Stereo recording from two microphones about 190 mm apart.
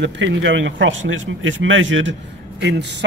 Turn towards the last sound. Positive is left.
turn(degrees=-65)  # may be behind; listen again after turning